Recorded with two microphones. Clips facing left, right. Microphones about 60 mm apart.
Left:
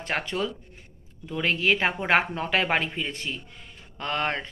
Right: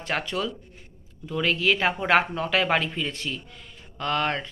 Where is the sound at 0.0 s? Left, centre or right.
Left.